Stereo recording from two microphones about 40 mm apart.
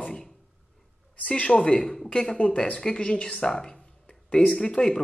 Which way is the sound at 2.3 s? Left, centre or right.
Left.